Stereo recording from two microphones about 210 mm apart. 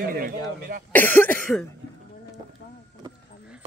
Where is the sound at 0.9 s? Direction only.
10° left (ahead or behind).